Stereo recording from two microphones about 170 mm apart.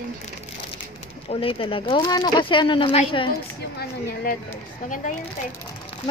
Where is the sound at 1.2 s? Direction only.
35° left (ahead or behind).